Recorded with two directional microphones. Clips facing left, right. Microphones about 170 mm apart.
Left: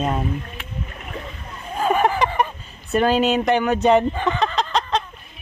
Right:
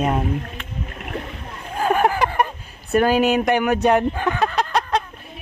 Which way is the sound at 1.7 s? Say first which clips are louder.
Even; 5° right (ahead or behind).